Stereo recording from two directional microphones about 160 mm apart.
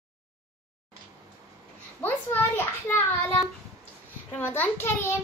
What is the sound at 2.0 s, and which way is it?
A child's voice, 15° left (ahead or behind).